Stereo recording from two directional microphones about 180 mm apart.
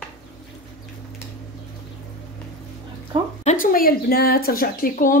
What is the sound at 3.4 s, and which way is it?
Speech, 45° left (ahead or behind).